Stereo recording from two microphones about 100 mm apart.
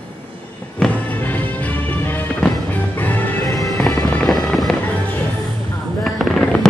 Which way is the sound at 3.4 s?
35° left (ahead or behind).